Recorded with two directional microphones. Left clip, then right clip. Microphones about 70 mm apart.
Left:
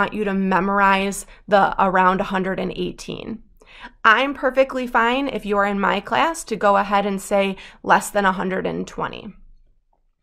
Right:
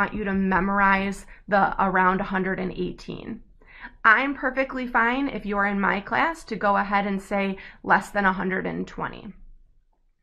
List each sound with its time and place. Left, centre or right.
0.0 s a woman's voice: left